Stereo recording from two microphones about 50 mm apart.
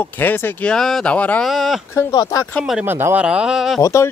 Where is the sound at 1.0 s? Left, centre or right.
Left.